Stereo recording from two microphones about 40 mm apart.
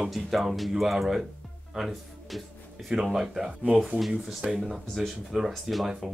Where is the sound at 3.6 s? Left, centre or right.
Right.